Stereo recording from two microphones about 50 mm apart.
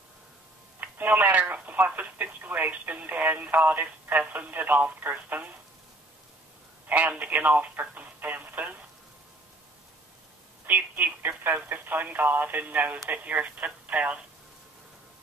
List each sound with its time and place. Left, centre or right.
0.7 s telephone: right
2.0 s speech: right
6.9 s speech: right
7.8 s a sound: right
10.7 s speech: right